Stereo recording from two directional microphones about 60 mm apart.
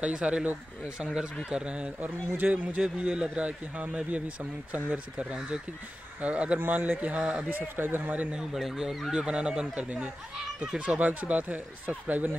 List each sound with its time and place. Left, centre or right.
0.0 s speech: centre
2.0 s speech: right
7.5 s speech: right
8.4 s speech: centre; by 12.3 s right